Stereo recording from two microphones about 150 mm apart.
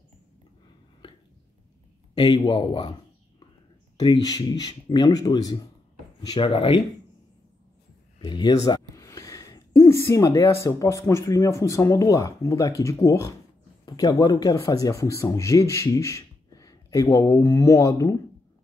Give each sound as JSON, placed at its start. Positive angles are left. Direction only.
{"t": 2.1, "sound": "speech", "side_deg": 30}
{"t": 8.2, "sound": "speech", "side_deg": 30}
{"t": 8.6, "sound": "a sound", "side_deg": 25}
{"t": 10.6, "sound": "speech", "side_deg": 20}